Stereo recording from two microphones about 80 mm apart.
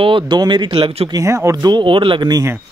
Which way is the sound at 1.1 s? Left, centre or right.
Right.